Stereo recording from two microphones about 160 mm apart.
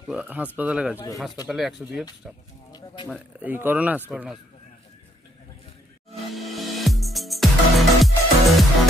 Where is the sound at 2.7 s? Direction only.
30° left (ahead or behind).